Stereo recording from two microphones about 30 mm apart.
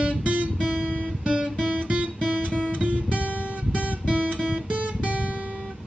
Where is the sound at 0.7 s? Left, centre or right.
Right.